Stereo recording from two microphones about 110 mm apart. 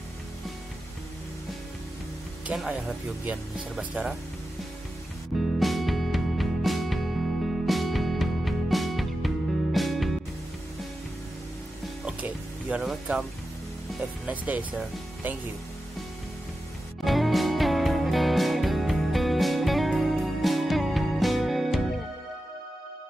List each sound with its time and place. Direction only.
2.5 s speech: centre (ahead or behind)
5.6 s music: centre (ahead or behind)
12.0 s music: 10° right (ahead or behind)
14.2 s speech: 15° right (ahead or behind)
17.0 s music: centre (ahead or behind)